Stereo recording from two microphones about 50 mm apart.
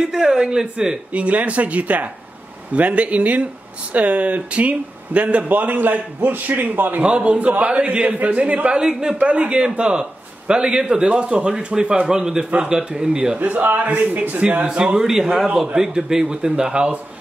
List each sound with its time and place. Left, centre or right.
0.0 s a man's voice: centre
1.1 s a man's voice: right
7.0 s a man's voice: right
9.2 s a man's voice: right
13.4 s a man's voice: right
15.0 s a man's voice: centre